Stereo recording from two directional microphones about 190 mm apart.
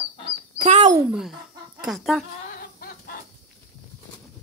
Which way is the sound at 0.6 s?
40° right (ahead or behind).